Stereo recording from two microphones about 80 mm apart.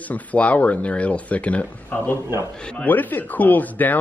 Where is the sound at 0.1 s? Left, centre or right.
Centre.